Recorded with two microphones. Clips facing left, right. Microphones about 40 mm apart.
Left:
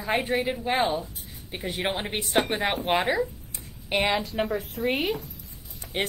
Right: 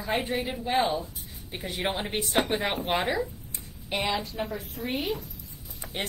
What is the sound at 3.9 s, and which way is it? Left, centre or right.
Speech, left.